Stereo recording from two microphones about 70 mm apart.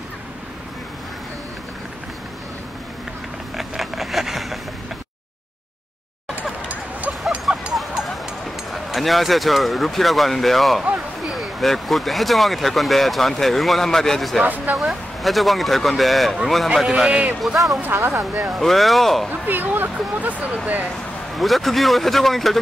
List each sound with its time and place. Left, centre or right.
3.5 s a sound: centre
7.7 s music: centre
8.7 s speech: centre
14.4 s speech: right
14.8 s a man's voice: centre
17.9 s speech: right
18.3 s a man's voice: centre
19.4 s speech: right
21.4 s speech: centre